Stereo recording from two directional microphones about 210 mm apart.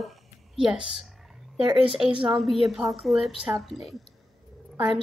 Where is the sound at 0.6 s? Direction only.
5° right (ahead or behind).